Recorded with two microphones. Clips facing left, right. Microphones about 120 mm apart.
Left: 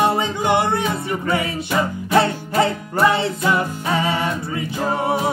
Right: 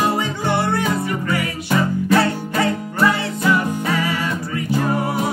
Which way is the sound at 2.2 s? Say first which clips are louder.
Left 1 dB; 25° left (ahead or behind).